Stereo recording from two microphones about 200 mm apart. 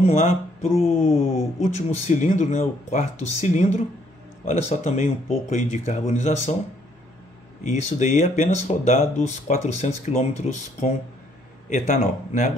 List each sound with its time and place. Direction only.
0.0 s speech: 35° left (ahead or behind)
7.6 s speech: 40° left (ahead or behind)